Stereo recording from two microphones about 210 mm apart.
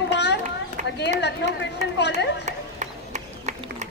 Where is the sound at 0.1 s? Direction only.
55° left (ahead or behind).